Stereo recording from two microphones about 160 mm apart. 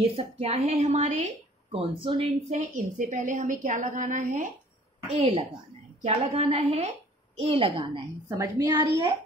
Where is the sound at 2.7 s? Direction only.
55° right (ahead or behind).